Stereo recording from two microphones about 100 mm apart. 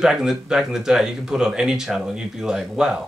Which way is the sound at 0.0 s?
5° right (ahead or behind).